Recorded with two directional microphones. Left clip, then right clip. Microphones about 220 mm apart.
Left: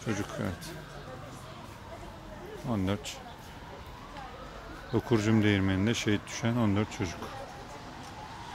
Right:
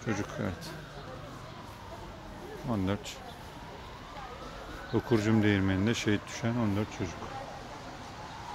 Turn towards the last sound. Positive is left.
turn(degrees=20)  # may be behind; listen again after turning